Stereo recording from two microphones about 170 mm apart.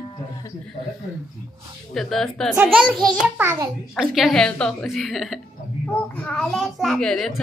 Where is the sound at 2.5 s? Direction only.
10° right (ahead or behind).